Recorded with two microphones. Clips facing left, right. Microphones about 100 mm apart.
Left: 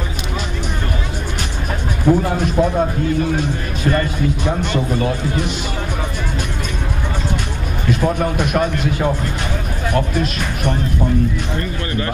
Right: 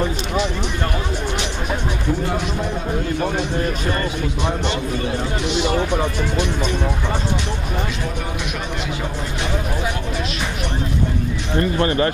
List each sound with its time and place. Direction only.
2.1 s music: 55° left (ahead or behind)
5.4 s speech: 45° left (ahead or behind)
8.2 s speech: 50° left (ahead or behind)